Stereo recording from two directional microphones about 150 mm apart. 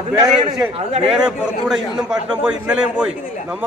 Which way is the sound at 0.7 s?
45° right (ahead or behind).